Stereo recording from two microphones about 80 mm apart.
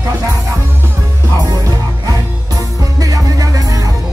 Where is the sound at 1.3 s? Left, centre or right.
Right.